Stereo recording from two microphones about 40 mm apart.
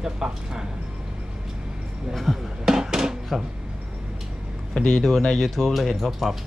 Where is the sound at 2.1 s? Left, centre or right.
Centre.